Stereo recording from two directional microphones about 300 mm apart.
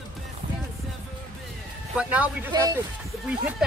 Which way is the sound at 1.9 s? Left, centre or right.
Centre.